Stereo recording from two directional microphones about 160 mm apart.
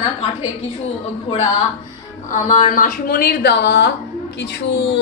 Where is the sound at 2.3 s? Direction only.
50° left (ahead or behind).